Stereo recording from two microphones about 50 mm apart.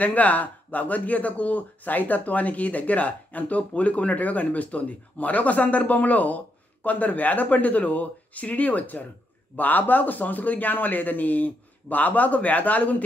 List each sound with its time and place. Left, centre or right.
0.0 s speech: left